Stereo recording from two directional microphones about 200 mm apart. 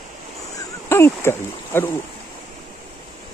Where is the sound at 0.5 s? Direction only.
15° left (ahead or behind).